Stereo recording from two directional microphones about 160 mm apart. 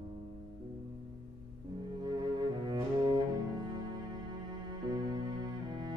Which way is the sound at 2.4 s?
25° right (ahead or behind).